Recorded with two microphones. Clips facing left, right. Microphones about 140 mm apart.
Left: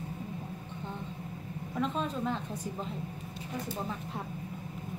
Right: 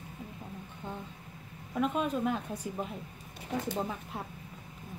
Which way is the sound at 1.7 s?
10° right (ahead or behind).